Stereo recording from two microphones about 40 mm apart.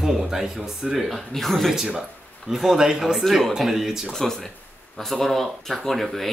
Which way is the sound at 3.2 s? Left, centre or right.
Centre.